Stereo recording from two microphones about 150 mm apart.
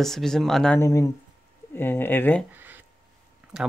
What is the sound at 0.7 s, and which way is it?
Speech, 20° left (ahead or behind).